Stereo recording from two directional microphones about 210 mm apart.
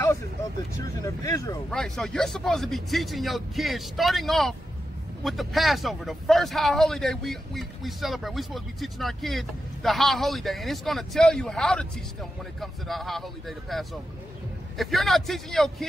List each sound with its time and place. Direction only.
0.8 s speech: 15° left (ahead or behind)
1.7 s speech: 5° left (ahead or behind)